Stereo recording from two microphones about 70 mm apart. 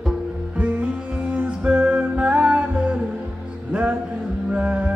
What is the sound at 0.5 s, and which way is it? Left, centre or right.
Music, centre.